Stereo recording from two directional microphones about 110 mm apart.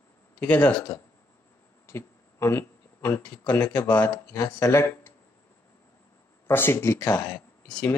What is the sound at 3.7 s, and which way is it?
Speech, 15° left (ahead or behind).